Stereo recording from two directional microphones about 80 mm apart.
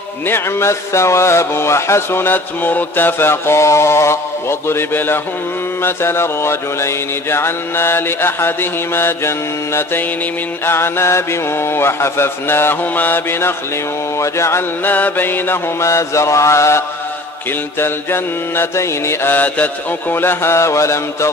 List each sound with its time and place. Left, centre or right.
0.3 s speech: left
10.6 s speech: left
14.9 s speech: left
17.7 s mantra: left
19.3 s speech: left